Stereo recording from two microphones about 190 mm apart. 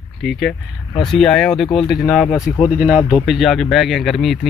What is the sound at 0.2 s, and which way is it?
Speech, centre (ahead or behind).